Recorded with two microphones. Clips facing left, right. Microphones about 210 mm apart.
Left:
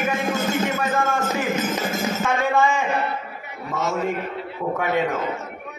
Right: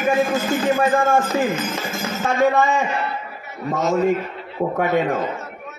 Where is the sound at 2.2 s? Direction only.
45° right (ahead or behind).